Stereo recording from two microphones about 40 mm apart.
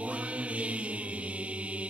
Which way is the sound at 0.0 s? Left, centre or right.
Right.